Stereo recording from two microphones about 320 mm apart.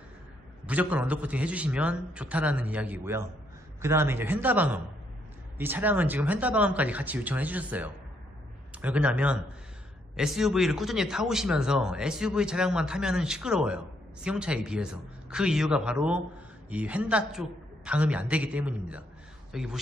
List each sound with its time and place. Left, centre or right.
0.7 s speech: centre